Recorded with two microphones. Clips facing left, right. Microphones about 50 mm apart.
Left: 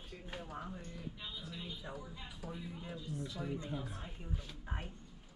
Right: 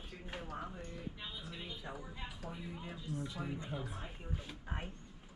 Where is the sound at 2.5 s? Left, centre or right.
Centre.